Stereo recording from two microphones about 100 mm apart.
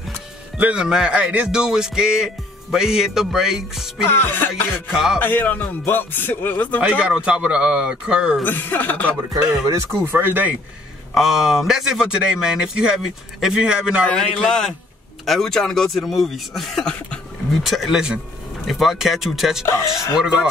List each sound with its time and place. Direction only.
0.6 s speech: 10° right (ahead or behind)
4.2 s speech: 20° left (ahead or behind)
4.7 s speech: 5° right (ahead or behind)
5.2 s speech: 20° left (ahead or behind)
6.8 s speech: 10° right (ahead or behind)
8.5 s speech: 20° left (ahead or behind)
10.0 s speech: 20° right (ahead or behind)
11.1 s speech: 5° right (ahead or behind)
14.0 s a man's voice: 5° left (ahead or behind)
19.6 s speech: 30° left (ahead or behind)